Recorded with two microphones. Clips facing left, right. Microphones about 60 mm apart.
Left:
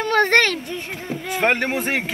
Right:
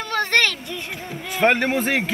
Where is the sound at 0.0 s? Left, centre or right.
Left.